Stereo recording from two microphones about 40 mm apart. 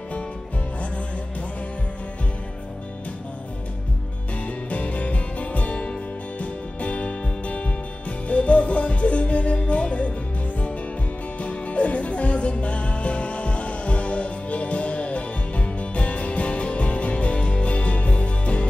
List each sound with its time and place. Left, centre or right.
4.6 s music: left
11.3 s music: left